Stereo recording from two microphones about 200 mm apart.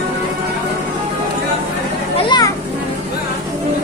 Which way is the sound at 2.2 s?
20° left (ahead or behind).